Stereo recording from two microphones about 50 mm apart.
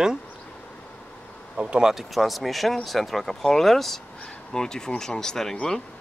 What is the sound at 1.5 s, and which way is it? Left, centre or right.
Speech, right.